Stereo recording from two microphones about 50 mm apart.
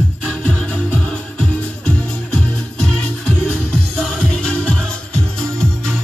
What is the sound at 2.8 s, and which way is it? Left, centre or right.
Music, centre.